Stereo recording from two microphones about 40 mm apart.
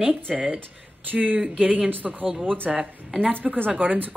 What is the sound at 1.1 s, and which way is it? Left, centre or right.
Speech, right.